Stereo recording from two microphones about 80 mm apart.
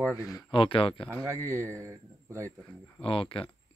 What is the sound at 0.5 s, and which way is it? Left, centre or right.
Speech, left.